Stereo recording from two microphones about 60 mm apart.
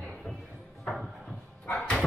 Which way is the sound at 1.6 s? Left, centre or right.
Left.